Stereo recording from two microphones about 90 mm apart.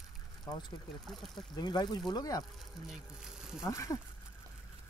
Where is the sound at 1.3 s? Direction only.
50° left (ahead or behind).